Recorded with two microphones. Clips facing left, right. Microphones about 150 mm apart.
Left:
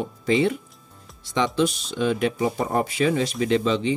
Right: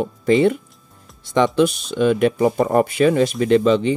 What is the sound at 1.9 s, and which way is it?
Speech, 60° right (ahead or behind).